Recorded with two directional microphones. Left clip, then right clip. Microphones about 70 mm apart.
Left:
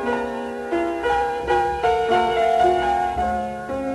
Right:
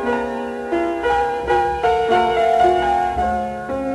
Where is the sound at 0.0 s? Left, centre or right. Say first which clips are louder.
Right 3 dB; left.